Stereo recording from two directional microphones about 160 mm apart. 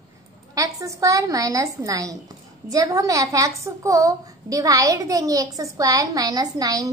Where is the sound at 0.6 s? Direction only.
20° right (ahead or behind).